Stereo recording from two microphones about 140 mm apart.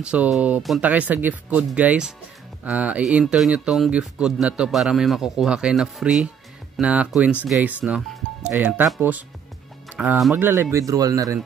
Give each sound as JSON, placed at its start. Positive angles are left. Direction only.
{"t": 0.0, "sound": "speech", "side_deg": -5}
{"t": 10.0, "sound": "speech", "side_deg": -10}